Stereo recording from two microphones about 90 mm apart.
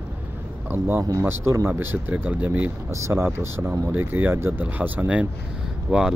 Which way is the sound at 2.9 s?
35° right (ahead or behind).